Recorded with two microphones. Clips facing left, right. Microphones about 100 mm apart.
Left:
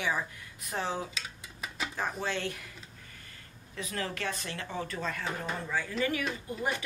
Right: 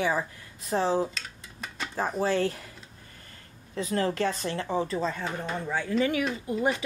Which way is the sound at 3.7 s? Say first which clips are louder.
Right 9 dB; 35° right (ahead or behind).